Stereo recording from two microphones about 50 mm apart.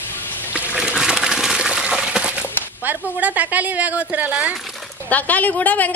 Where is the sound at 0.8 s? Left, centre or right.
Centre.